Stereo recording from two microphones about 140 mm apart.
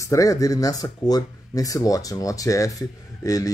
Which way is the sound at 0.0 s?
25° left (ahead or behind).